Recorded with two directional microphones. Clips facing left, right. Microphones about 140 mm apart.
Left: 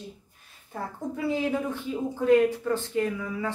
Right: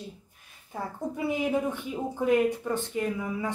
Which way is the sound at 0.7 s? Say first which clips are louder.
Even; 15° right (ahead or behind).